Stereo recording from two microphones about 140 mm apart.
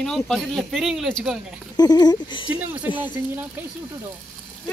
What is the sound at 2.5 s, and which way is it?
Speech, 10° right (ahead or behind).